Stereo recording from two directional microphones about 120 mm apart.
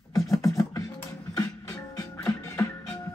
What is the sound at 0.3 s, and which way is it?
Beatboxing, 30° left (ahead or behind).